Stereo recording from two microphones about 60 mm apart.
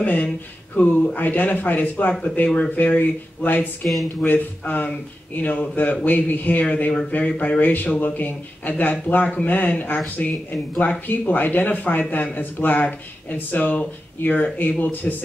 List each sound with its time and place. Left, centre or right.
0.0 s a sound: left
1.0 s speech: left
3.8 s speech: centre
4.3 s speech: left